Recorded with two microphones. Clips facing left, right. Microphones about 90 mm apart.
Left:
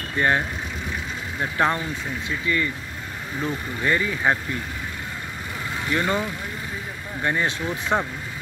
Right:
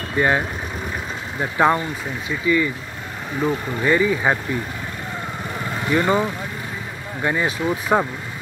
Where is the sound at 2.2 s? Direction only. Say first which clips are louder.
Right 6 dB; 5° right (ahead or behind).